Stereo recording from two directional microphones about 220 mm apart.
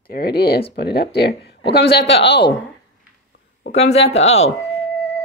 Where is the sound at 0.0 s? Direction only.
45° left (ahead or behind).